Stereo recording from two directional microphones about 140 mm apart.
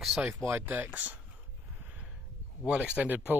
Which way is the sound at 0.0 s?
5° right (ahead or behind).